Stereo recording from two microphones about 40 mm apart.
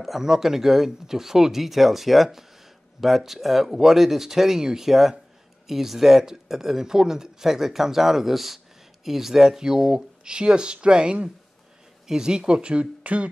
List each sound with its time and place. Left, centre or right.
0.0 s speech: centre; by 13.3 s right